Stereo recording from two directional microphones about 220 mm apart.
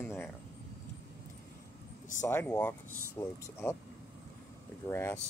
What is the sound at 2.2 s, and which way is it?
Speech, 10° left (ahead or behind).